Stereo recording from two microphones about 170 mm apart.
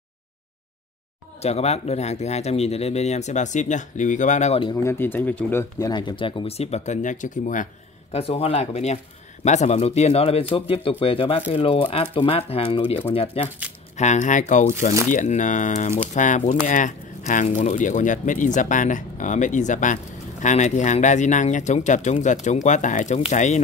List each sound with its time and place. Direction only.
1.4 s speech: 40° left (ahead or behind)
4.8 s speech: 10° left (ahead or behind); by 7.6 s 50° left (ahead or behind)
8.1 s speech: 35° left (ahead or behind)